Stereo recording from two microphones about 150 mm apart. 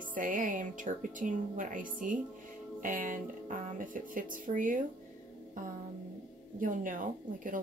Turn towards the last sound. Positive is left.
turn(degrees=-60)  # may be behind; listen again after turning